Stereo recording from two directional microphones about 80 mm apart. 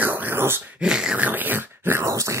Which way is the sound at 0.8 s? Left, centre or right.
Centre.